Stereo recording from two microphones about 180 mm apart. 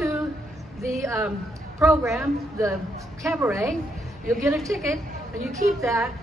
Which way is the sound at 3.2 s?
15° right (ahead or behind).